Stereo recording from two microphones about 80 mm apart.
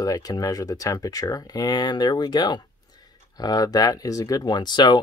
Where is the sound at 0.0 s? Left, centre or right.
Left.